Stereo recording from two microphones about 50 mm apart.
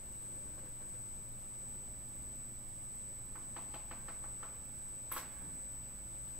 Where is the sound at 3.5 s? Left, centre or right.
Centre.